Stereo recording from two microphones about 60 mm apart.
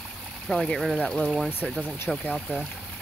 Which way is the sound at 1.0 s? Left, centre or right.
Centre.